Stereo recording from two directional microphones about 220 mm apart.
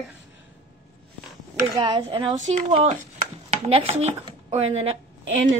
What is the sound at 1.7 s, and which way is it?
Speech, 20° right (ahead or behind).